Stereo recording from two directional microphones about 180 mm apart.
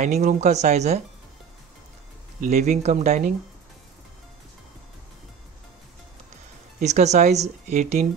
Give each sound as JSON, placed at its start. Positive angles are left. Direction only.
{"t": 0.0, "sound": "speech", "side_deg": -40}
{"t": 2.4, "sound": "speech", "side_deg": -40}
{"t": 6.8, "sound": "speech", "side_deg": -40}